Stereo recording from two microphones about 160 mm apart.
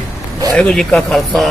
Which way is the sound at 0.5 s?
5° left (ahead or behind).